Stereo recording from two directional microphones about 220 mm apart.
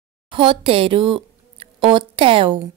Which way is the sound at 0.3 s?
25° right (ahead or behind).